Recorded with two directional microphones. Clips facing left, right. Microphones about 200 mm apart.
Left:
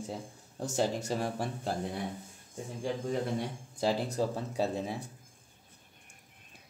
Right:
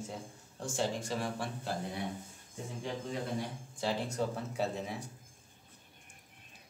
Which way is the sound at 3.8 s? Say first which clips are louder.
Left 4 dB; 35° left (ahead or behind).